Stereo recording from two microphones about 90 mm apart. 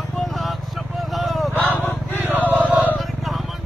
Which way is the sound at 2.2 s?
25° right (ahead or behind).